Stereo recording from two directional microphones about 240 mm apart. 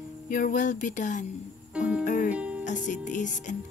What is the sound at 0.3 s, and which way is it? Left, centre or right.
Music, left.